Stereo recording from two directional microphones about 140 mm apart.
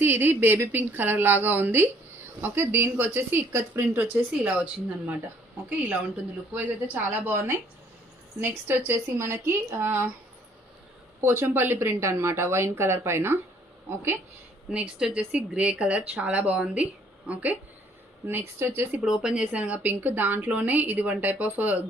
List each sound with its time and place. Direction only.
0.0 s a woman's voice: 15° right (ahead or behind)
11.1 s a woman's voice: 15° right (ahead or behind)
14.7 s a woman's voice: 5° right (ahead or behind)